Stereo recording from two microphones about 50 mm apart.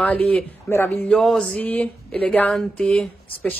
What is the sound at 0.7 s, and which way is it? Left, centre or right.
Speech, left.